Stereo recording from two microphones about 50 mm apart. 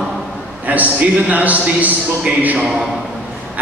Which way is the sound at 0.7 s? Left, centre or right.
Right.